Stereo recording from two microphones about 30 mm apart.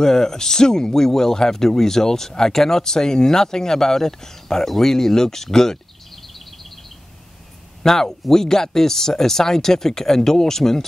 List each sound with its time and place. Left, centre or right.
0.0 s speech: centre
7.8 s speech: centre